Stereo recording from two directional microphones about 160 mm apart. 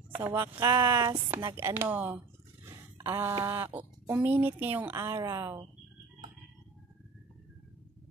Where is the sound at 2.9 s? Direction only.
15° right (ahead or behind).